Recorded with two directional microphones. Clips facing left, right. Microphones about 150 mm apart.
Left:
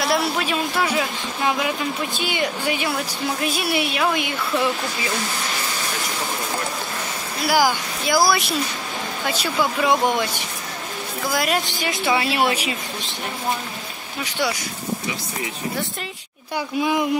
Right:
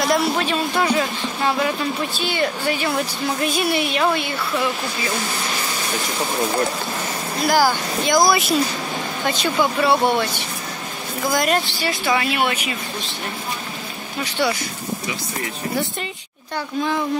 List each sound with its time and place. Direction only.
0.0 s speech: 5° left (ahead or behind)
7.4 s speech: 10° left (ahead or behind)
8.3 s speech: centre (ahead or behind)
11.3 s speech: 5° left (ahead or behind)
11.8 s speech: 20° left (ahead or behind)
14.4 s speech: 10° left (ahead or behind)
16.5 s speech: 10° left (ahead or behind)